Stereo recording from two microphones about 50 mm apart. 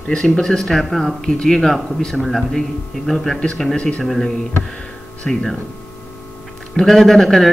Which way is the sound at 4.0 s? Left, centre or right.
Centre.